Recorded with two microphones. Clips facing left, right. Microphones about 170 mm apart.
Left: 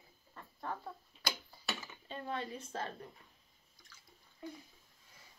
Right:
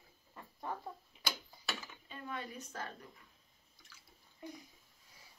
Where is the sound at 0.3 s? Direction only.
15° right (ahead or behind).